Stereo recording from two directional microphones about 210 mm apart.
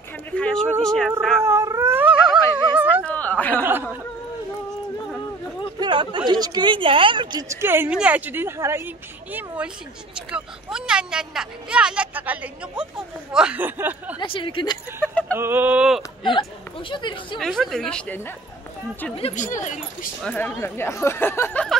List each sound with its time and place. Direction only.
0.3 s speech: 5° left (ahead or behind)
1.4 s dog: 10° right (ahead or behind)
2.7 s a sound: 5° right (ahead or behind)
3.1 s a sound: 5° left (ahead or behind)
5.8 s a woman's voice: 20° right (ahead or behind)
14.2 s a woman's voice: 25° left (ahead or behind)
15.3 s a woman's voice: 10° right (ahead or behind)
16.0 s speech: 25° left (ahead or behind)
17.4 s speech: centre (ahead or behind)
19.1 s speech: 30° left (ahead or behind)
20.2 s speech: 5° left (ahead or behind)